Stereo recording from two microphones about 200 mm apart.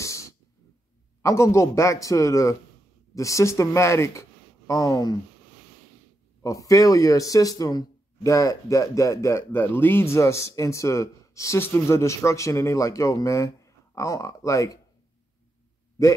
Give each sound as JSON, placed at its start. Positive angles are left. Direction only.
{"t": 0.0, "sound": "a sound", "side_deg": 15}
{"t": 1.2, "sound": "a man's voice", "side_deg": 15}
{"t": 6.4, "sound": "a man's voice", "side_deg": 15}
{"t": 16.0, "sound": "a man's voice", "side_deg": 15}